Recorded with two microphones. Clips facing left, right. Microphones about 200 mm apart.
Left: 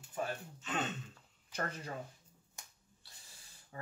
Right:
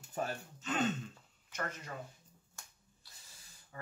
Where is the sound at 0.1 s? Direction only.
40° right (ahead or behind).